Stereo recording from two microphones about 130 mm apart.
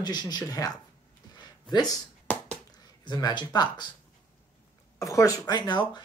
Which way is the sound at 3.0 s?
35° left (ahead or behind).